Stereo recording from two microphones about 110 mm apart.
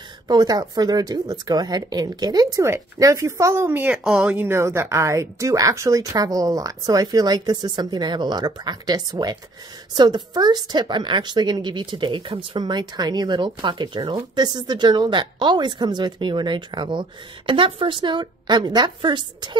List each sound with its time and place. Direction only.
0.3 s a woman's voice: 40° right (ahead or behind); by 3.9 s 20° right (ahead or behind)
3.9 s a woman's voice: 5° right (ahead or behind); by 19.5 s 45° right (ahead or behind)